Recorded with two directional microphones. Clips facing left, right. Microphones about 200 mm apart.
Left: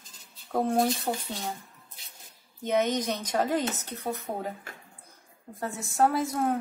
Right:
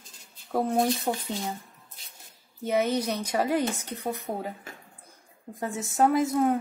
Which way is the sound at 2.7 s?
5° right (ahead or behind).